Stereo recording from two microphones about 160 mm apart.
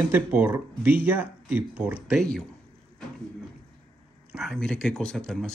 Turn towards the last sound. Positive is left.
turn(degrees=5)  # may be behind; listen again after turning